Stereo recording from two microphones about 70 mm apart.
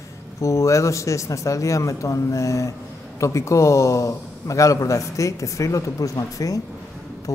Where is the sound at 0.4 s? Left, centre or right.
Left.